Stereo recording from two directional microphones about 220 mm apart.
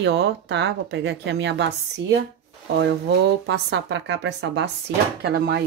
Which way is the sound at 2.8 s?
55° right (ahead or behind).